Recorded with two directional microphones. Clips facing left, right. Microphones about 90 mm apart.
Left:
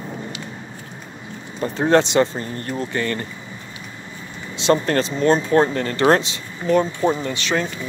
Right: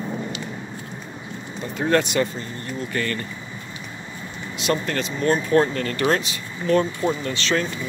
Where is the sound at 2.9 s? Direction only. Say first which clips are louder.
Even; 25° left (ahead or behind).